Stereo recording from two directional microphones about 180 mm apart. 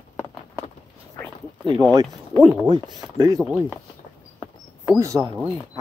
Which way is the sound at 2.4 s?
5° right (ahead or behind).